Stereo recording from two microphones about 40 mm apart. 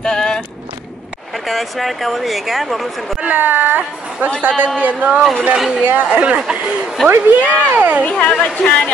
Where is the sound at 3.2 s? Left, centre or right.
Right.